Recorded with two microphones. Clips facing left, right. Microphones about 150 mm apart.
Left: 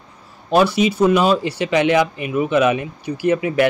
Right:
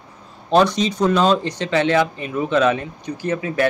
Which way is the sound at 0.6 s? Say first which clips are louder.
Left 2 dB; 10° left (ahead or behind).